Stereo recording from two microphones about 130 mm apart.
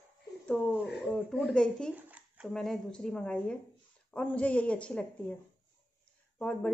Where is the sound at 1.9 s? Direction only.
10° right (ahead or behind).